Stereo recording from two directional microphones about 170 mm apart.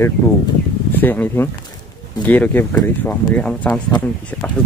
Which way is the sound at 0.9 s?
10° left (ahead or behind).